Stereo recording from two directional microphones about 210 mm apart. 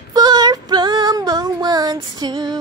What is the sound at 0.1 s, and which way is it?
Female singing, 20° right (ahead or behind).